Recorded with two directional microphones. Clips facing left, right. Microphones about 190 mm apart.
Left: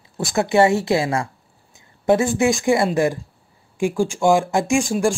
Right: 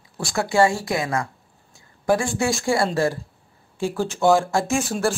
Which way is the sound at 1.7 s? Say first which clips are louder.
Left 3 dB; 20° left (ahead or behind).